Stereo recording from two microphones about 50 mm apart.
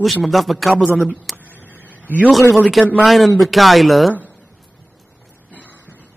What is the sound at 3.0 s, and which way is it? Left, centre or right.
A man's voice, centre.